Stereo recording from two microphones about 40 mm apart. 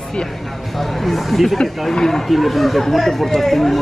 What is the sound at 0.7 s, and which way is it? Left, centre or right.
Speech, centre.